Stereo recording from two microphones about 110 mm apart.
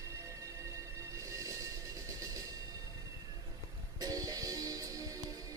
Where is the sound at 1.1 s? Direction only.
30° right (ahead or behind).